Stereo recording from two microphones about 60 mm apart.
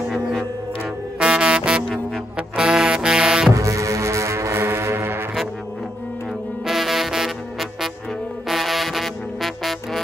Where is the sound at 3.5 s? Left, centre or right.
Right.